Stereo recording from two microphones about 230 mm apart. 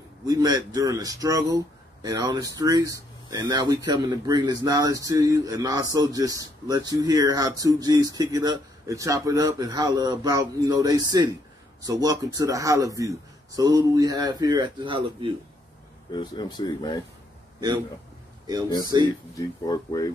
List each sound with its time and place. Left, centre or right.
0.3 s a man's voice: centre
16.1 s speech: centre
19.3 s speech: centre